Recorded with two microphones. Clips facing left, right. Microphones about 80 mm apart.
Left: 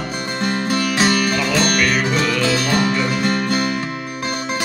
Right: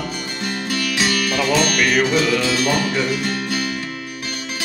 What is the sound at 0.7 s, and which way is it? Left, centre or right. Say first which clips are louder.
Music: left 3 dB; left.